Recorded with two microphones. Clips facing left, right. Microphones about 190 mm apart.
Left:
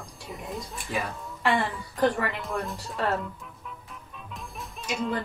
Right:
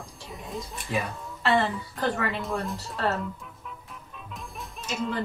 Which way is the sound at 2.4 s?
Centre (ahead or behind).